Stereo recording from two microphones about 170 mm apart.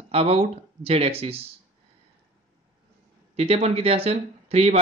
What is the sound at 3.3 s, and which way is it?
Speech, 35° right (ahead or behind).